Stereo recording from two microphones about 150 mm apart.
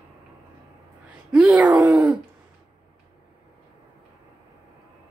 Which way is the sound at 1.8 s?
20° right (ahead or behind).